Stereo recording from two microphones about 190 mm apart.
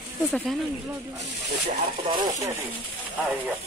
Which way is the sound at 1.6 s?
35° right (ahead or behind).